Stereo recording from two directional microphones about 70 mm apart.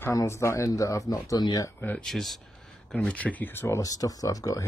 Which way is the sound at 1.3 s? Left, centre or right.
Left.